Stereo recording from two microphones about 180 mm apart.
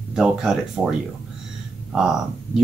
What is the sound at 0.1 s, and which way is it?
Speech, 5° right (ahead or behind).